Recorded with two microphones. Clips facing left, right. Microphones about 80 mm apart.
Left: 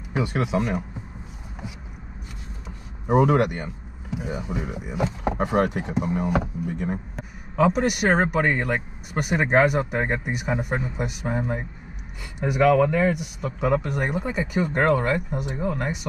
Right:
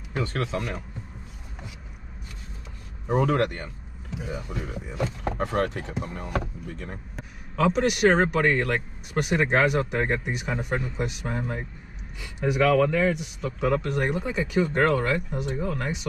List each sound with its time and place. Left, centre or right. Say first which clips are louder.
0.1 s speech: left 4 dB; centre
3.1 s speech: left 4 dB; centre